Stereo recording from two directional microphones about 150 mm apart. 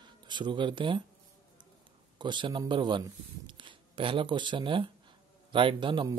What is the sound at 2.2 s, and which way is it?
Speech, 30° right (ahead or behind).